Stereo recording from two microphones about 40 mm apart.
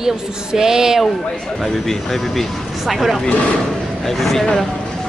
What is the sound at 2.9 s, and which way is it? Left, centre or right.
A woman's voice, centre.